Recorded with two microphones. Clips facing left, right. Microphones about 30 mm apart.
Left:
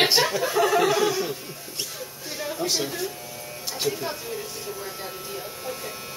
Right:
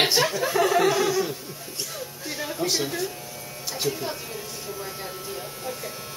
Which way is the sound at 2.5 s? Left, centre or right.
Centre.